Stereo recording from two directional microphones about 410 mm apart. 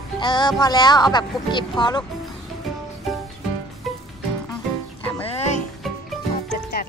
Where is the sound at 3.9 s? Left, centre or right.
Centre.